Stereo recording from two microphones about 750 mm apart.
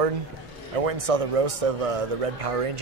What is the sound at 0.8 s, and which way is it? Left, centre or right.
A man's voice, right.